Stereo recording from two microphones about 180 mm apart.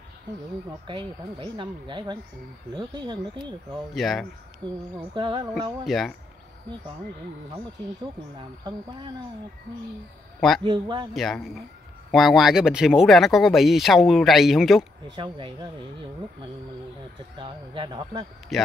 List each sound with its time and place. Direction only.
0.7 s speech: 25° right (ahead or behind)
3.9 s speech: centre (ahead or behind)
5.1 s speech: 25° right (ahead or behind)
5.5 s speech: centre (ahead or behind)
10.6 s speech: 25° right (ahead or behind)
11.1 s speech: centre (ahead or behind)
15.0 s speech: 25° right (ahead or behind)
17.4 s speech: 25° right (ahead or behind)
18.5 s speech: centre (ahead or behind)